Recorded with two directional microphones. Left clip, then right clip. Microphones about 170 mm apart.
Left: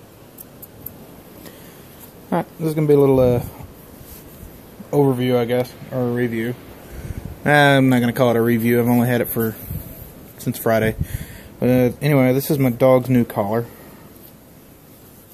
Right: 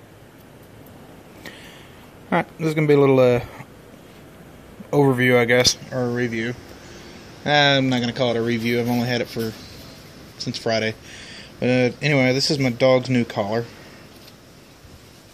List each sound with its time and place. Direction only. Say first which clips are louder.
2.2 s speech: right 1 dB; 10° left (ahead or behind)
4.9 s speech: right 1 dB; 5° left (ahead or behind)
10.6 s speech: left 4 dB; 20° left (ahead or behind)
11.6 s speech: left 2 dB; 5° left (ahead or behind)